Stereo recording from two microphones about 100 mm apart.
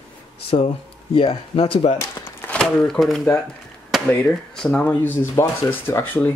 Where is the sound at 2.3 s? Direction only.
25° left (ahead or behind).